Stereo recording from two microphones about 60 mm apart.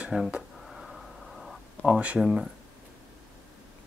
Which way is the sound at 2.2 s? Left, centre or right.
Centre.